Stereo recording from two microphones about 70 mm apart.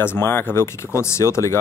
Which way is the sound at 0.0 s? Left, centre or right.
Left.